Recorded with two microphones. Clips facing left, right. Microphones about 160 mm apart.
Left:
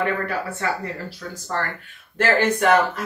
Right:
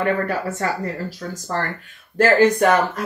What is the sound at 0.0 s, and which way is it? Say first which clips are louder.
Speech: right 3 dB; 40° right (ahead or behind).